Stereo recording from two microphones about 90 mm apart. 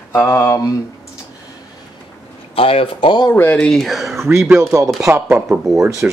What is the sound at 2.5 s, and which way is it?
Speech, 90° left.